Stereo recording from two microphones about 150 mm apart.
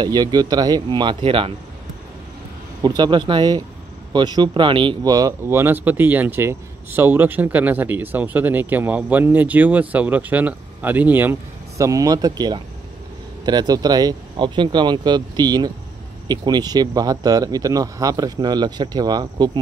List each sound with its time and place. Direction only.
0.0 s speech: 25° right (ahead or behind)
2.8 s speech: 30° right (ahead or behind)